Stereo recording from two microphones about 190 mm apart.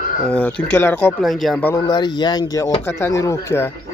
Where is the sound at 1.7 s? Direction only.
20° left (ahead or behind).